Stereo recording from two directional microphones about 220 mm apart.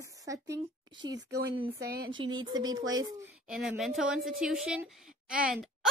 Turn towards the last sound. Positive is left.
turn(degrees=0)  # may be behind; listen again after turning